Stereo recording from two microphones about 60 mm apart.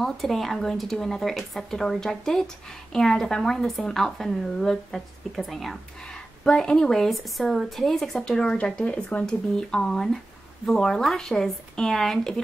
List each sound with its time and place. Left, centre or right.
0.0 s speech: centre
6.4 s a woman's voice: centre
9.2 s a woman's voice: centre